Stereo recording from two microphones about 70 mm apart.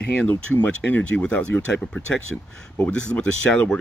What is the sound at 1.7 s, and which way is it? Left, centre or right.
Speech, centre.